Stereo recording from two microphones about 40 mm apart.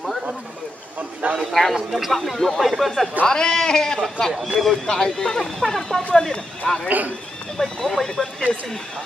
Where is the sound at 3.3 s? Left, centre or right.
Centre.